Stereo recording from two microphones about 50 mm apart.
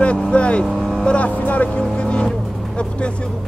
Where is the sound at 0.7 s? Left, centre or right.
Centre.